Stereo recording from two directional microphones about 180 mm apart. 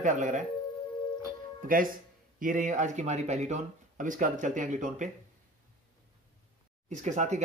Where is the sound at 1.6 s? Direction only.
50° right (ahead or behind).